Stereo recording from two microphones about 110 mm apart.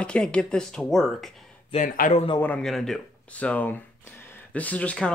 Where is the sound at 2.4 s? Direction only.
15° left (ahead or behind).